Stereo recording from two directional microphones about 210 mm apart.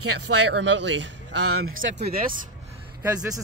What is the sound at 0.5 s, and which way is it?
Speech, 55° right (ahead or behind).